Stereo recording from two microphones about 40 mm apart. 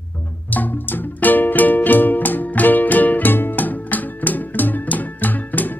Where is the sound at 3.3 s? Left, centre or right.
Left.